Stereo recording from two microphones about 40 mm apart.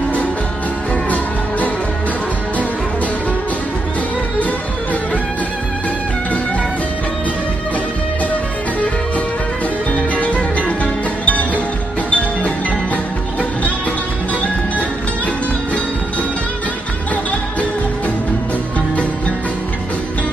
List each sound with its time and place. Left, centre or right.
9.9 s music: left